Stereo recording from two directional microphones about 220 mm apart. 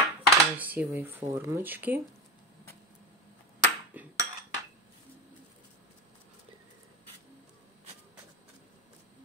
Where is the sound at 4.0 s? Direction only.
5° right (ahead or behind).